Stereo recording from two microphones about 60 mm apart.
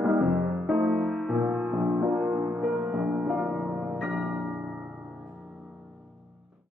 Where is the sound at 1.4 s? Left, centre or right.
Right; by 4.2 s centre.